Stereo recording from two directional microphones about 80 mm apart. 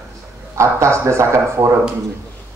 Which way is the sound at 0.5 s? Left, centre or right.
Right.